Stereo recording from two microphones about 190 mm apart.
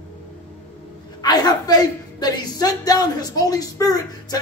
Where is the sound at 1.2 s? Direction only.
20° left (ahead or behind).